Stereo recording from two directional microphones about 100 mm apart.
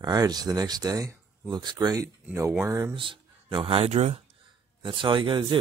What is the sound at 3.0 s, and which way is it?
Speech, 60° right (ahead or behind).